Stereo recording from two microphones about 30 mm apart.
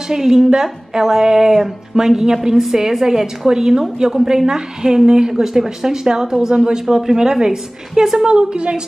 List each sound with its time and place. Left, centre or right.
0.1 s a woman's voice: centre
5.3 s a woman's voice: centre
8.3 s a woman's voice: right